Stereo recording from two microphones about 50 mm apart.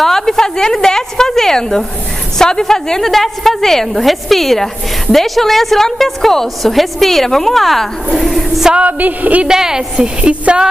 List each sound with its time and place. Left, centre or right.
0.0 s a sound: centre
2.3 s a woman's voice: centre
8.7 s a woman's voice: right
9.4 s a woman's voice: centre